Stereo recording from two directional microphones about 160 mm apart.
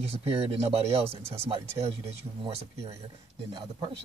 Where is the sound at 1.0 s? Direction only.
15° right (ahead or behind).